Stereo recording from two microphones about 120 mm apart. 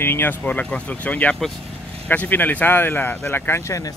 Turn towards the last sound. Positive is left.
turn(degrees=20)  # may be behind; listen again after turning